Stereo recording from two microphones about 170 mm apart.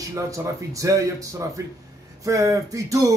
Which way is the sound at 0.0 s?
20° right (ahead or behind).